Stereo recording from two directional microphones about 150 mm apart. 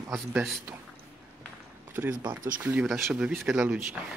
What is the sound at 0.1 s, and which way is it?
Speech, 15° right (ahead or behind).